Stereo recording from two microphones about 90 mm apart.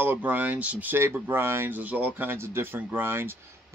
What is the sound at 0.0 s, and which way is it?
Speech, 20° right (ahead or behind).